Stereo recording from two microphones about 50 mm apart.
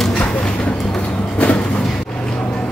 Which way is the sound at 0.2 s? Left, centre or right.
Left.